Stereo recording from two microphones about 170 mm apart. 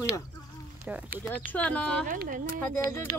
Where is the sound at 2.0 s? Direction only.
55° right (ahead or behind).